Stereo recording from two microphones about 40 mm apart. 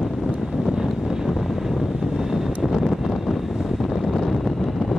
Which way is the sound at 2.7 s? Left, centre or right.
Centre.